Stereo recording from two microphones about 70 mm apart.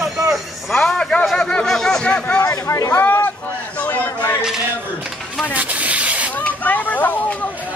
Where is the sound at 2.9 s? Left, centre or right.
Left.